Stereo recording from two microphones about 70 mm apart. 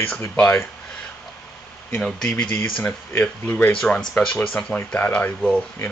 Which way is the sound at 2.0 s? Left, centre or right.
Centre.